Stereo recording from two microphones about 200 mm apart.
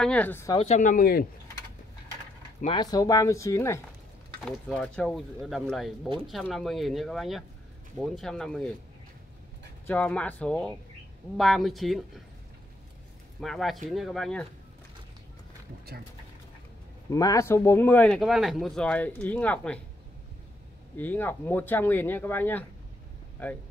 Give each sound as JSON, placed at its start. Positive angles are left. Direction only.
{"t": 0.0, "sound": "speech", "side_deg": 5}
{"t": 0.6, "sound": "speech", "side_deg": 35}
{"t": 2.6, "sound": "speech", "side_deg": 20}
{"t": 4.4, "sound": "speech", "side_deg": 5}
{"t": 9.8, "sound": "speech", "side_deg": 5}
{"t": 13.4, "sound": "speech", "side_deg": 0}
{"t": 17.1, "sound": "speech", "side_deg": 15}
{"t": 20.9, "sound": "speech", "side_deg": 10}